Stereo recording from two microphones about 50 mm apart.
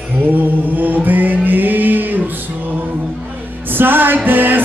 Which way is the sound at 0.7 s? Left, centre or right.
Right.